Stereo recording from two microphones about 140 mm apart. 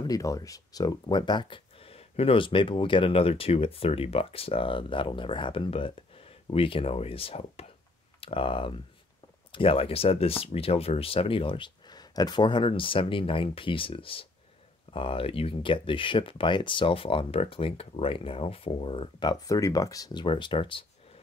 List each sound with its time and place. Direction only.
0.0 s speech: 25° left (ahead or behind)